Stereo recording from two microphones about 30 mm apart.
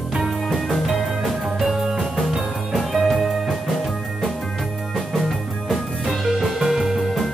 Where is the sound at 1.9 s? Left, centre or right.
Centre.